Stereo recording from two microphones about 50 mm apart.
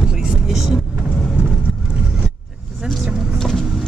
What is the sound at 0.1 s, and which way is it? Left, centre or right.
Vehicle, centre.